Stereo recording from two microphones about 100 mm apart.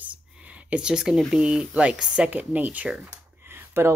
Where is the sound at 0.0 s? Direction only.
15° right (ahead or behind).